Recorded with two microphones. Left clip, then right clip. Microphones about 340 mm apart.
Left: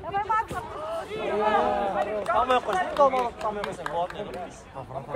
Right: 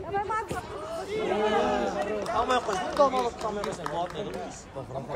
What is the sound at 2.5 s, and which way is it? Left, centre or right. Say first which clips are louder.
Run: left 3 dB; left.